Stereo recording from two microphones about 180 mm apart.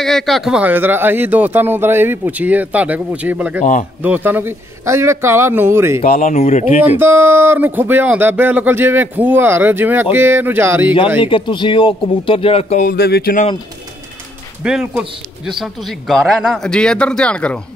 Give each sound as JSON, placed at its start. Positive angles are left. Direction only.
{"t": 0.0, "sound": "speech", "side_deg": 0}
{"t": 6.0, "sound": "speech", "side_deg": 50}
{"t": 6.3, "sound": "speech", "side_deg": 40}
{"t": 7.0, "sound": "speech", "side_deg": -15}
{"t": 11.1, "sound": "speech", "side_deg": 30}
{"t": 12.8, "sound": "speech", "side_deg": 60}
{"t": 14.6, "sound": "speech", "side_deg": -5}